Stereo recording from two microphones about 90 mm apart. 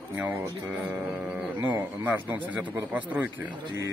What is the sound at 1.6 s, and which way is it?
Speech, 15° right (ahead or behind).